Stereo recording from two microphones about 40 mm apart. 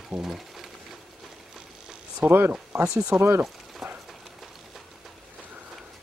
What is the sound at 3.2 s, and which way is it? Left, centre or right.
Speech, right.